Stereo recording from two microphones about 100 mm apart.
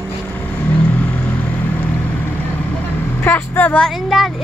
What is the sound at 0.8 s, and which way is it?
Vehicle, 15° left (ahead or behind).